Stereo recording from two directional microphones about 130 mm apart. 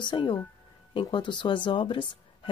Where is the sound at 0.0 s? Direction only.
40° left (ahead or behind).